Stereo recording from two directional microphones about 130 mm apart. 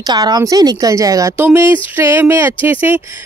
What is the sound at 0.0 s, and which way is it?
Speech, 30° right (ahead or behind).